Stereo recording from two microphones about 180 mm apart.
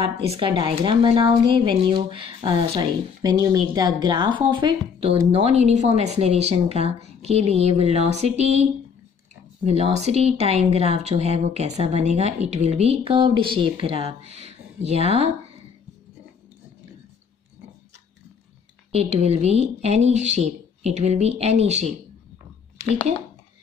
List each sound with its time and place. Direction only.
0.3 s a woman's voice: 30° right (ahead or behind)
9.7 s a woman's voice: 35° right (ahead or behind)
18.9 s a woman's voice: 35° right (ahead or behind)